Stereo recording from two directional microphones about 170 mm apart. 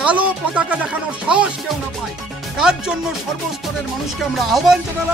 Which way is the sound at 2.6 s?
5° right (ahead or behind).